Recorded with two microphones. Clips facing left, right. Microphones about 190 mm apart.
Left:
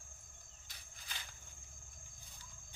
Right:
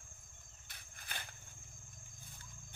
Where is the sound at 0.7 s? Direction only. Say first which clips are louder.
Right 3 dB; 55° right (ahead or behind).